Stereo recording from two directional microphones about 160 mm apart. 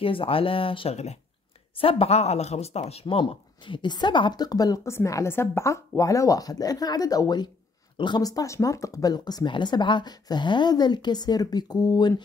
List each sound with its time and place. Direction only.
0.0 s speech: 35° left (ahead or behind)